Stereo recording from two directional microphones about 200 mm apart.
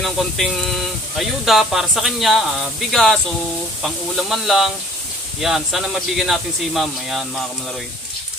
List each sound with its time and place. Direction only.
0.0 s speech: centre (ahead or behind)